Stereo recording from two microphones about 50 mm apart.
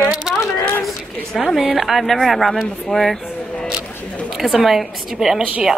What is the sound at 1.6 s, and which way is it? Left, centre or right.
A woman's voice, centre.